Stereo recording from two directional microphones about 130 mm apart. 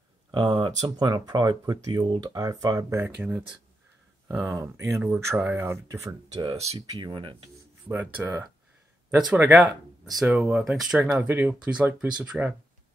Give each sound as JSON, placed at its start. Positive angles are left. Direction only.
{"t": 0.3, "sound": "speech", "side_deg": -40}
{"t": 3.2, "sound": "speech", "side_deg": -10}
{"t": 4.5, "sound": "speech", "side_deg": -25}
{"t": 5.0, "sound": "speech", "side_deg": -15}
{"t": 6.5, "sound": "speech", "side_deg": -55}
{"t": 6.9, "sound": "speech", "side_deg": -35}
{"t": 7.9, "sound": "speech", "side_deg": -15}